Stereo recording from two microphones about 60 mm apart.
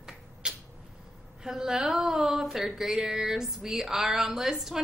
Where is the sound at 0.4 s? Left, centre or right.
Centre.